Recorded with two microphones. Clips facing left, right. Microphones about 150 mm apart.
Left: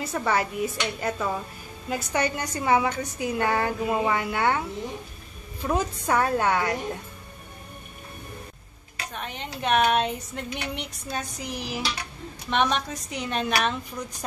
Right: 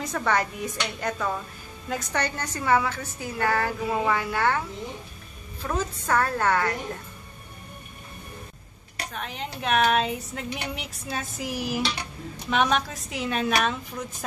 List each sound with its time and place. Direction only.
0.0 s a woman's voice: 5° left (ahead or behind)
5.6 s a woman's voice: 15° left (ahead or behind)
9.1 s speech: centre (ahead or behind)